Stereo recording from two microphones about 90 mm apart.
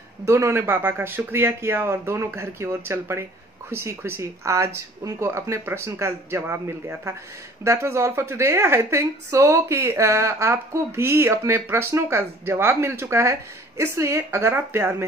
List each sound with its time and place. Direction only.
0.2 s a woman's voice: 30° right (ahead or behind)